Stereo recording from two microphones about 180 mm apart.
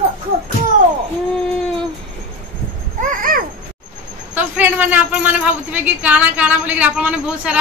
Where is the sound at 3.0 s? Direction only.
50° right (ahead or behind).